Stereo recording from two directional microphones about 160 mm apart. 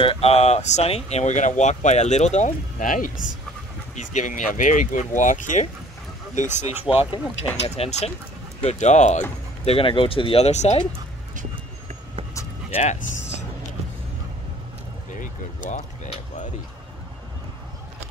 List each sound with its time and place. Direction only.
0.0 s speech: 35° left (ahead or behind)
9.7 s speech: 35° left (ahead or behind)
12.7 s speech: 45° left (ahead or behind)
15.1 s a sound: 50° left (ahead or behind)